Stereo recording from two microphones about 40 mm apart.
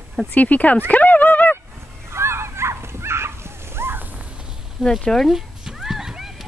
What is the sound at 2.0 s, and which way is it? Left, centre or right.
Dog, right.